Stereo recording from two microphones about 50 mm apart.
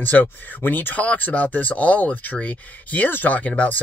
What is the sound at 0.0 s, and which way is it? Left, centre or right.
Speech, left.